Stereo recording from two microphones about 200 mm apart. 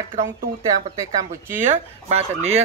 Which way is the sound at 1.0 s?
10° right (ahead or behind).